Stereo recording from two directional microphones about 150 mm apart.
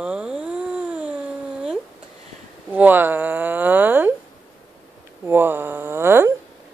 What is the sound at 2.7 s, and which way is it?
Speech, 10° right (ahead or behind).